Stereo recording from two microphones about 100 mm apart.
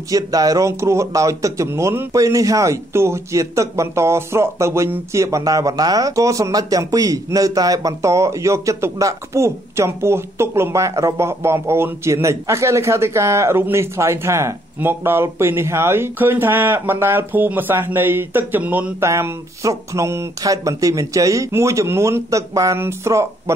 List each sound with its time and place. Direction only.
0.1 s speech: 35° right (ahead or behind); by 19.0 s 15° right (ahead or behind)
19.0 s speech: 30° right (ahead or behind)